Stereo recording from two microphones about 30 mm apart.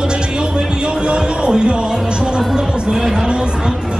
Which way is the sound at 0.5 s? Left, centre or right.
Right.